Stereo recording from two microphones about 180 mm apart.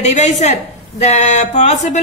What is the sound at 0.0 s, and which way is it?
Speech, 40° left (ahead or behind).